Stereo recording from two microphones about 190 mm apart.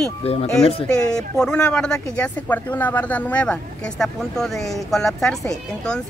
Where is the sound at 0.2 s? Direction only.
30° left (ahead or behind).